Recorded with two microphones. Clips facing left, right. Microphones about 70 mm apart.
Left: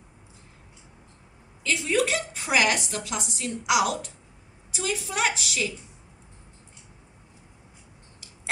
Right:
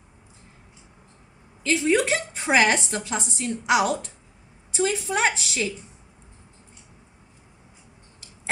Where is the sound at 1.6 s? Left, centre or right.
Right.